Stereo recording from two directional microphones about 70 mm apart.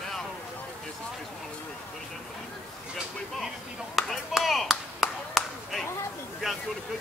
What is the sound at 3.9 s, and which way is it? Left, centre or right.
Clapping, centre.